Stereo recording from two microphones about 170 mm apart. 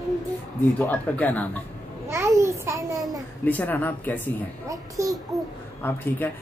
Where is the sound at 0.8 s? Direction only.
10° left (ahead or behind).